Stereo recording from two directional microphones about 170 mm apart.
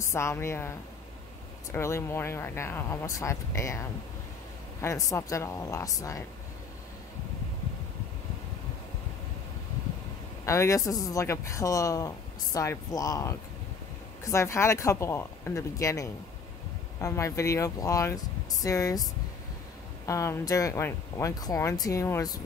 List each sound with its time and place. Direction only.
0.0 s speech: 15° left (ahead or behind)
4.8 s speech: 15° left (ahead or behind)
10.4 s speech: 15° left (ahead or behind)
20.1 s speech: 20° left (ahead or behind)